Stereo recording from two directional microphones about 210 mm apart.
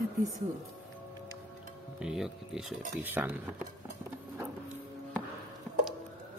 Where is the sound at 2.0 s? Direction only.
Centre (ahead or behind).